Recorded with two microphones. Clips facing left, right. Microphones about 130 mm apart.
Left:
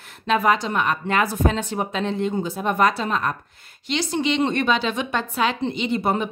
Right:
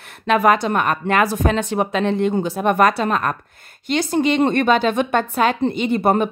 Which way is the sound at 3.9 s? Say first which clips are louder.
Right 5 dB; 50° right (ahead or behind).